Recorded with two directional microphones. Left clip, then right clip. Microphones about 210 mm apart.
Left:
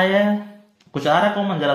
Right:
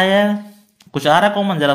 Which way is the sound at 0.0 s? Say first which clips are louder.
Right 3 dB; 35° right (ahead or behind).